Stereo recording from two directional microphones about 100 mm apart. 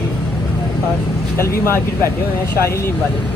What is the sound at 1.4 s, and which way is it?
Speech, 25° left (ahead or behind).